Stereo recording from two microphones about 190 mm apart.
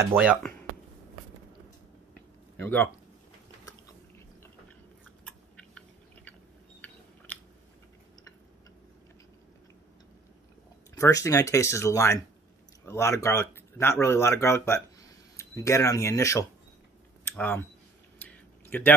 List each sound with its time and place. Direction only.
0.0 s speech: 10° right (ahead or behind)
2.6 s speech: 10° left (ahead or behind)
5.2 s chewing: 5° left (ahead or behind)
11.0 s speech: 15° left (ahead or behind)
17.2 s a sound: 10° left (ahead or behind)